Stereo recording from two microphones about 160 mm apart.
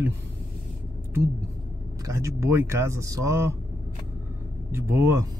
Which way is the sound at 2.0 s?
20° right (ahead or behind).